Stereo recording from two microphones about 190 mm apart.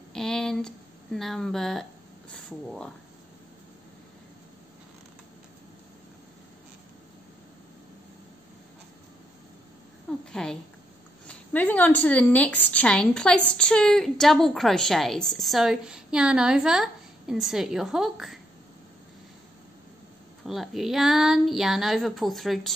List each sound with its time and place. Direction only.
0.1 s speech: centre (ahead or behind)
10.3 s a woman's voice: 5° left (ahead or behind)
20.4 s a woman's voice: centre (ahead or behind)